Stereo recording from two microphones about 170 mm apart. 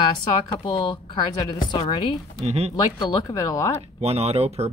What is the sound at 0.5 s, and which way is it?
Speech, 25° left (ahead or behind).